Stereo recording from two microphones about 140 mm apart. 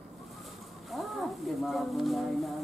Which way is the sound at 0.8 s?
Centre (ahead or behind).